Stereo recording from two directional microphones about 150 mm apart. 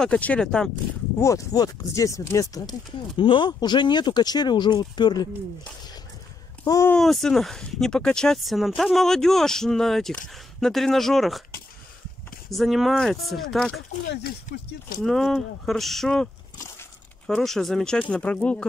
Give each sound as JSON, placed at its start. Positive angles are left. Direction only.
{"t": 0.0, "sound": "speech", "side_deg": 10}
{"t": 1.2, "sound": "speech", "side_deg": 20}
{"t": 3.2, "sound": "speech", "side_deg": 35}
{"t": 6.6, "sound": "speech", "side_deg": 20}
{"t": 6.9, "sound": "speech", "side_deg": 0}
{"t": 12.4, "sound": "speech", "side_deg": 0}
{"t": 14.2, "sound": "speech", "side_deg": 85}
{"t": 15.0, "sound": "speech", "side_deg": 0}
{"t": 17.3, "sound": "speech", "side_deg": 0}